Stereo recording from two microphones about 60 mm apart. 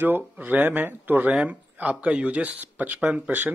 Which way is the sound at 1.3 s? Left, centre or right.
Right.